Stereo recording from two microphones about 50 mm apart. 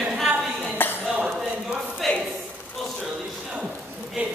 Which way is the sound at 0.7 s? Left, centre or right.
Left.